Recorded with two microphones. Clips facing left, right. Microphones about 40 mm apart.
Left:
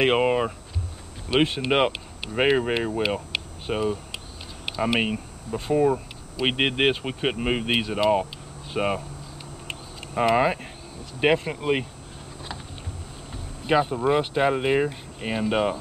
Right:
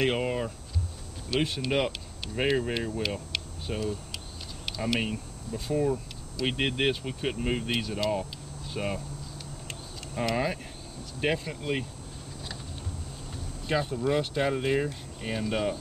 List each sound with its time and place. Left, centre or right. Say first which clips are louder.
0.0 s speech: left 7 dB; left
3.3 s a sound: left 5 dB; left
3.7 s speech: left 7 dB; left
4.6 s speech: left 6 dB; left
10.1 s speech: left 8 dB; left
13.7 s speech: left 6 dB; left